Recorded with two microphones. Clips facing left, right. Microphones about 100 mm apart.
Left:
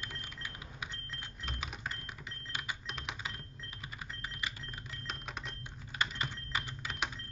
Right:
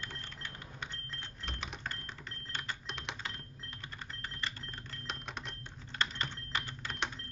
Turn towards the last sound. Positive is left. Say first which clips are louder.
# even
turn(degrees=5)  # may be behind; listen again after turning